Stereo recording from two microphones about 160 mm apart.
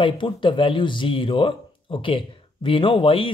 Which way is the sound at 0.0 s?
30° left (ahead or behind).